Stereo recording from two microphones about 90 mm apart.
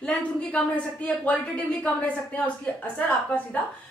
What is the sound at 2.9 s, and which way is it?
Speech, 15° left (ahead or behind).